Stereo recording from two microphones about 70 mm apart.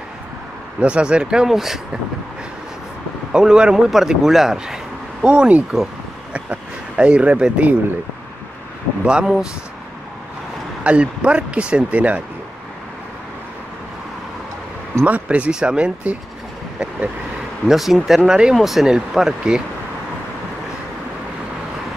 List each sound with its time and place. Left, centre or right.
0.7 s speech: centre
3.3 s speech: centre
9.0 s speech: centre
10.8 s speech: centre
15.0 s speech: right
17.6 s speech: centre